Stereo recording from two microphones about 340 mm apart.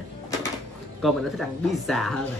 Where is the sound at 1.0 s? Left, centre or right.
Centre.